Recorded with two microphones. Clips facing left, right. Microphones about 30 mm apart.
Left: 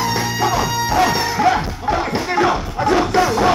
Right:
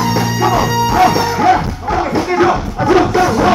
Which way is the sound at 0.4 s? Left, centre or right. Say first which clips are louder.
Right 5 dB; centre.